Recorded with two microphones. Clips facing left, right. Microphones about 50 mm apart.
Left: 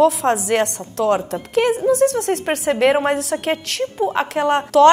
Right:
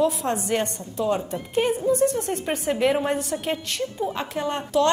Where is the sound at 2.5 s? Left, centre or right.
Left.